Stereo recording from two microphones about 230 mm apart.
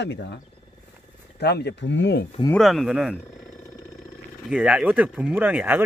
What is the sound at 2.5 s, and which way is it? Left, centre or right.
Speech, centre.